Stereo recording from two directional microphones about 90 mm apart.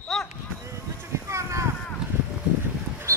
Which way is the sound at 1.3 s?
35° right (ahead or behind).